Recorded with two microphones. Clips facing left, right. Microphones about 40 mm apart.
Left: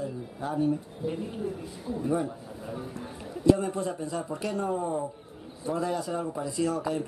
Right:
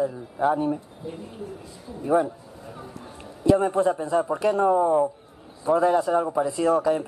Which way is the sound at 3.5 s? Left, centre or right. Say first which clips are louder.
Right 4 dB; right.